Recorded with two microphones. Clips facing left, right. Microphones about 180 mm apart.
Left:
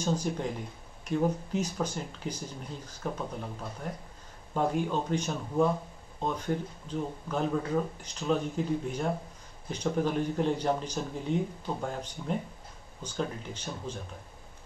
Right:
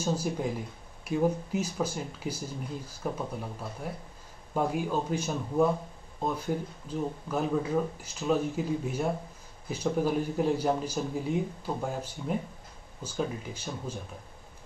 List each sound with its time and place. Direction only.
0.0 s speech: 5° right (ahead or behind)